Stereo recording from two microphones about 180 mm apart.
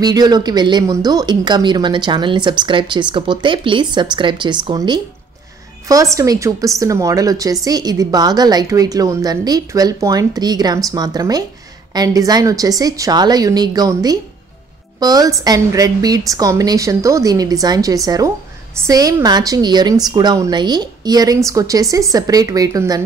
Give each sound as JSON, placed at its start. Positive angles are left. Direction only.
{"t": 0.0, "sound": "a woman's voice", "side_deg": -20}